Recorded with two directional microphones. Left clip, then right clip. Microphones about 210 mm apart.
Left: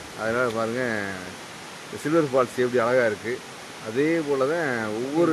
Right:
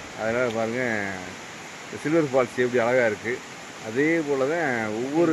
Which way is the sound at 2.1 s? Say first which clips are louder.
Even; centre (ahead or behind).